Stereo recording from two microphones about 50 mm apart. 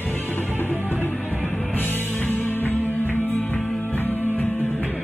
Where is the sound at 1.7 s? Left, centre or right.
Left.